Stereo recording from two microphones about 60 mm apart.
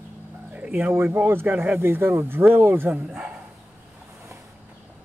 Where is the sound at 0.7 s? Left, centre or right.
Right.